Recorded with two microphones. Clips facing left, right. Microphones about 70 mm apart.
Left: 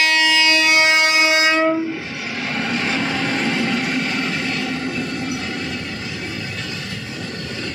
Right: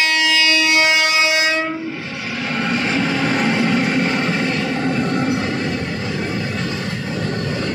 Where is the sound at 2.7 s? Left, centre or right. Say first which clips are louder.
Right 3 dB; centre; by 5.5 s right.